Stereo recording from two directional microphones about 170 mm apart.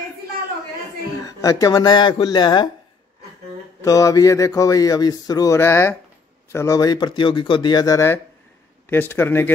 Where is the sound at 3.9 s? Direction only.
20° left (ahead or behind).